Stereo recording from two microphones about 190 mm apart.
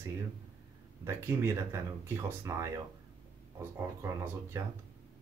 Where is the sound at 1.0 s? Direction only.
15° right (ahead or behind).